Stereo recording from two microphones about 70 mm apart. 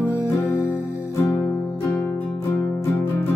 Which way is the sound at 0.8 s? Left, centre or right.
Centre.